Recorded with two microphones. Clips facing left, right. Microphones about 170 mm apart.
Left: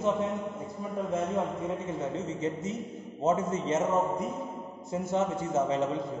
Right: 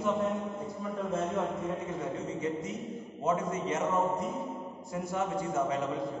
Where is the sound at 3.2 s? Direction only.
25° left (ahead or behind).